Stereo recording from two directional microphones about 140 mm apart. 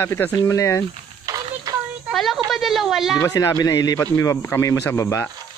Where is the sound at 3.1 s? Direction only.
25° left (ahead or behind).